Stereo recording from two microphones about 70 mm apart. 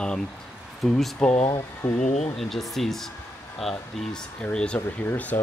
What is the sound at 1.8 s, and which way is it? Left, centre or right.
Speech, left.